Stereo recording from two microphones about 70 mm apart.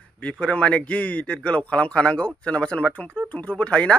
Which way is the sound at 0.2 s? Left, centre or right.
Centre.